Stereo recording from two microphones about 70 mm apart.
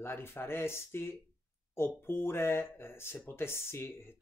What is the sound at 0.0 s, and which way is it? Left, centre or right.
Speech, left.